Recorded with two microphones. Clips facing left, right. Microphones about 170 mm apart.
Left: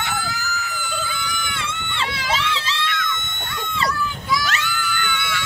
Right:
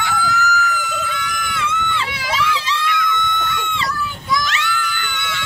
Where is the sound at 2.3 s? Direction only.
25° left (ahead or behind).